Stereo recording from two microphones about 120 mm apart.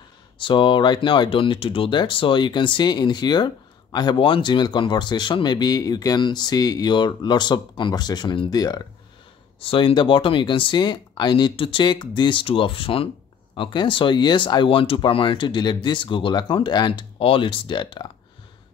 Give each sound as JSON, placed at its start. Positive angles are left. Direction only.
{"t": 0.4, "sound": "speech", "side_deg": 45}
{"t": 9.6, "sound": "speech", "side_deg": 50}